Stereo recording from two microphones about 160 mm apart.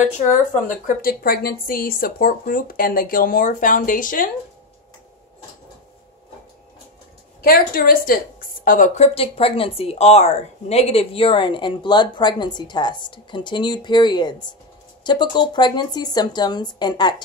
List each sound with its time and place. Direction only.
0.3 s a woman's voice: 55° left (ahead or behind)
7.4 s a woman's voice: 65° left (ahead or behind); by 17.1 s 25° left (ahead or behind)